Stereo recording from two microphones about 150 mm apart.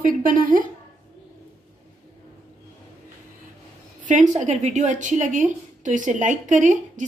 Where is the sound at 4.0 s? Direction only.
55° right (ahead or behind).